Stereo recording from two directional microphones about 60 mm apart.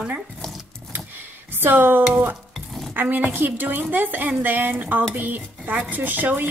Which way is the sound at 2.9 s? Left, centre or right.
Right.